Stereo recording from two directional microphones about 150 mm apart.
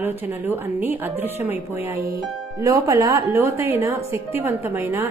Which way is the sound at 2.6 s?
20° right (ahead or behind).